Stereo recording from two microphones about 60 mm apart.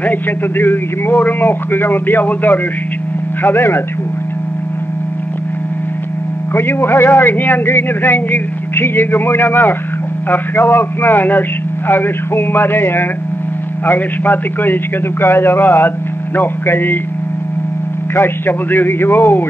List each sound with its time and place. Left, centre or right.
0.0 s speech: left
3.4 s speech: left
6.5 s speech: left
7.2 s speech: left
18.1 s speech: left